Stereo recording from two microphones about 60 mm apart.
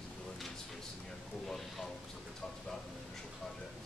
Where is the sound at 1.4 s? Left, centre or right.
Centre.